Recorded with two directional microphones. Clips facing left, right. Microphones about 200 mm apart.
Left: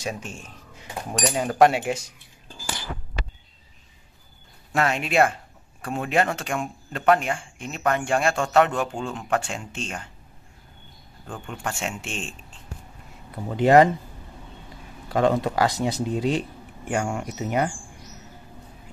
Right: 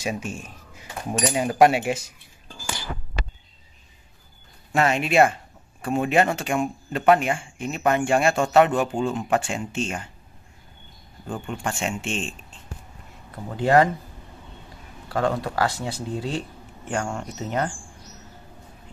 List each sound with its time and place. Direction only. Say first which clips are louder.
0.0 s speech: right 3 dB; 5° right (ahead or behind)
4.7 s speech: right 2 dB; centre (ahead or behind)
11.4 s speech: right 2 dB; 5° right (ahead or behind)
13.3 s speech: left 3 dB; 20° left (ahead or behind)
15.0 s speech: left 3 dB; 20° left (ahead or behind)